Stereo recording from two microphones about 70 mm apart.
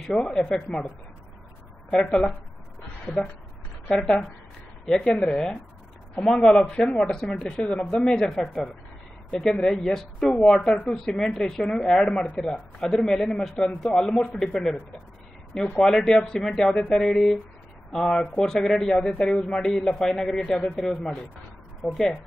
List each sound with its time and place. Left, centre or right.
0.0 s speech: centre
1.9 s speech: centre
4.0 s speech: centre
21.9 s speech: centre